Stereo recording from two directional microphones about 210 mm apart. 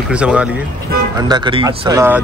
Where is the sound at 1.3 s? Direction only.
20° right (ahead or behind).